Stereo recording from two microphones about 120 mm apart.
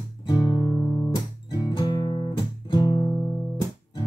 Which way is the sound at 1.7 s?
35° left (ahead or behind).